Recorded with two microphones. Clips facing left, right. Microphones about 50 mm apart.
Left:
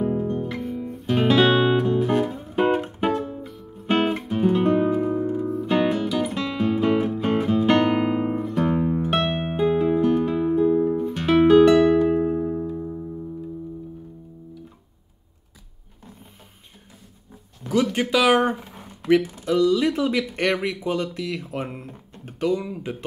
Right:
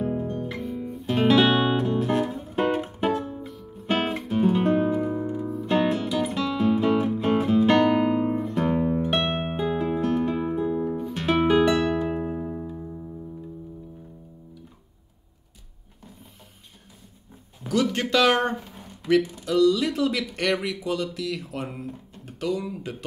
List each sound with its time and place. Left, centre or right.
0.0 s guitar: centre
7.6 s guitar: centre
8.4 s music: centre
17.8 s a sound: centre
19.4 s speech: centre
21.8 s music: centre
22.6 s speech: centre